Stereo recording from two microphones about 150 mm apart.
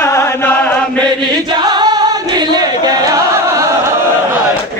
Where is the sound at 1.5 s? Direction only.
25° right (ahead or behind).